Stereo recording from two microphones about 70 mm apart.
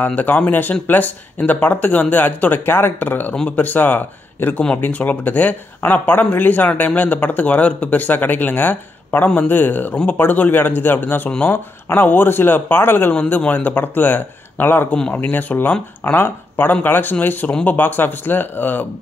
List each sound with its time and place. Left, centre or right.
0.0 s speech: left
13.1 s speech: centre